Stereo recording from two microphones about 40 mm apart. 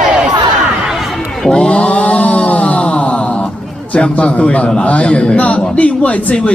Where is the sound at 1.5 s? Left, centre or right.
Left.